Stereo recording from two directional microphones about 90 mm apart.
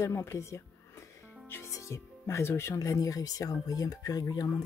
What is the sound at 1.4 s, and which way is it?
Music, 30° left (ahead or behind).